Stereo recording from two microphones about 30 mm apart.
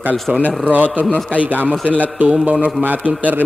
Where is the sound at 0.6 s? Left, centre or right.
Right.